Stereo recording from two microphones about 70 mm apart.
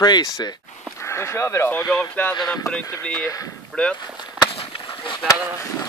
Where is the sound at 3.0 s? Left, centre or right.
Centre.